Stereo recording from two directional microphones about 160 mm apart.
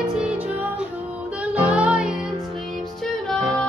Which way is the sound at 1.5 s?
10° right (ahead or behind).